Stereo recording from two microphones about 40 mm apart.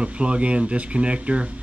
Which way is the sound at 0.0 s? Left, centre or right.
Right.